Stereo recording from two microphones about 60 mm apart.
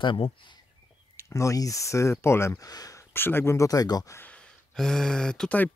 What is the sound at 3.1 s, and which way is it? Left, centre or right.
Speech, left.